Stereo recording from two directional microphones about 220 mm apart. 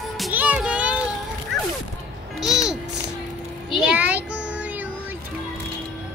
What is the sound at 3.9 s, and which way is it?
Child singing, 5° right (ahead or behind).